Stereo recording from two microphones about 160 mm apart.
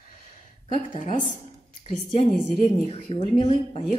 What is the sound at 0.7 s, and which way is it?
A woman's voice, 30° left (ahead or behind).